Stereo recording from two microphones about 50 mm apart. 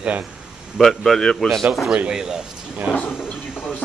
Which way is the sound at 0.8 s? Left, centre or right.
Centre.